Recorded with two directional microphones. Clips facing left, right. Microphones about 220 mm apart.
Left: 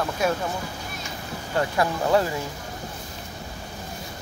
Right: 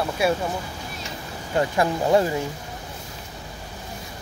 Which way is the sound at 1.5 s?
20° right (ahead or behind).